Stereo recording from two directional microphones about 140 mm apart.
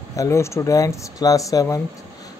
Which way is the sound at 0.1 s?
20° left (ahead or behind).